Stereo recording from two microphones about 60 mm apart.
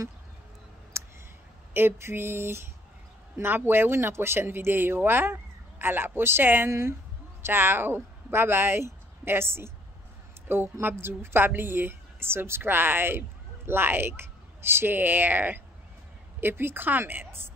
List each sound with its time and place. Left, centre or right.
1.7 s a woman's voice: right